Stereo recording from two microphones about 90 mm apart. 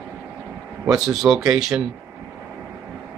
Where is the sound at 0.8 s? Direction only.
5° right (ahead or behind).